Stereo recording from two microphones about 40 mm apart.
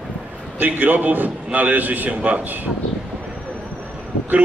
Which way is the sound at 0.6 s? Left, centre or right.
Right.